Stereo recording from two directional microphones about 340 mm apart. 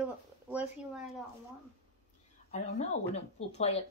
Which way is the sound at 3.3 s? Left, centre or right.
Centre.